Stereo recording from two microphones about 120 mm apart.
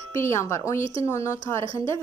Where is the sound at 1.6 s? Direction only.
50° right (ahead or behind).